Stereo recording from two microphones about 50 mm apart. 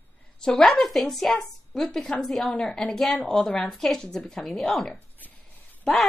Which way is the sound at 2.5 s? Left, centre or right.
Centre.